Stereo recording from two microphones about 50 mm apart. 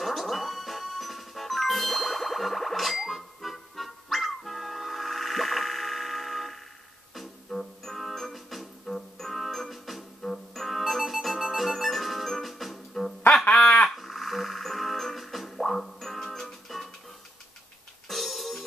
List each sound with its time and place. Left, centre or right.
0.0 s music: centre
13.5 s a sound: centre
13.8 s music: centre
18.0 s music: centre